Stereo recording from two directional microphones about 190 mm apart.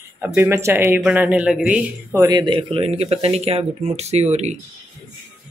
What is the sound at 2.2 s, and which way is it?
Speech, 20° right (ahead or behind).